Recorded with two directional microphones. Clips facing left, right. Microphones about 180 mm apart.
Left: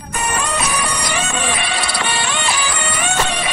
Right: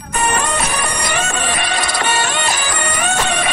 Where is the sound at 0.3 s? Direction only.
60° right (ahead or behind).